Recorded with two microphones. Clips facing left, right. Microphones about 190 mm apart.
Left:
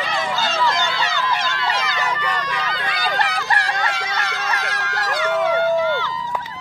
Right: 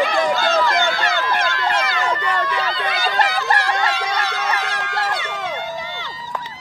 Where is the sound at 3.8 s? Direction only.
30° right (ahead or behind).